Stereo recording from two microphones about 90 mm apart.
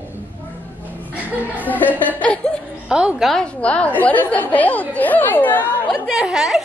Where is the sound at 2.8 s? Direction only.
10° right (ahead or behind).